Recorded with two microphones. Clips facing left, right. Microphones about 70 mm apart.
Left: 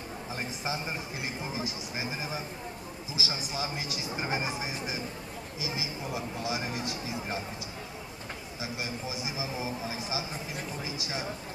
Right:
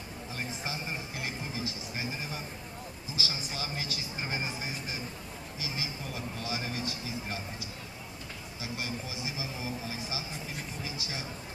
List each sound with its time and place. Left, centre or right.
0.7 s a man's voice: left
8.5 s a man's voice: left